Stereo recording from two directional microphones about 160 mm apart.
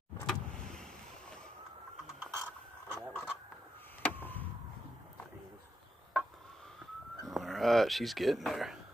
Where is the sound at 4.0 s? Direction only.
10° left (ahead or behind).